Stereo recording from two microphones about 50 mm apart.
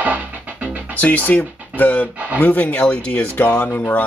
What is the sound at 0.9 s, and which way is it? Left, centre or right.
Speech, left.